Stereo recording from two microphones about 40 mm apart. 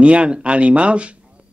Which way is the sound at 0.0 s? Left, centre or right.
Right.